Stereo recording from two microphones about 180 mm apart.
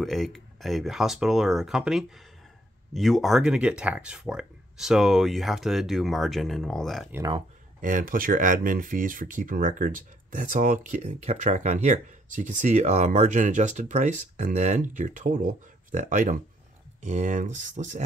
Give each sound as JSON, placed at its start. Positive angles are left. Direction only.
{"t": 0.0, "sound": "speech", "side_deg": 0}
{"t": 7.1, "sound": "speech", "side_deg": -15}
{"t": 7.8, "sound": "speech", "side_deg": -50}